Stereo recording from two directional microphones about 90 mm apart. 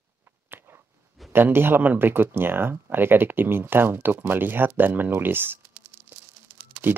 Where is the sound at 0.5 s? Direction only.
25° right (ahead or behind).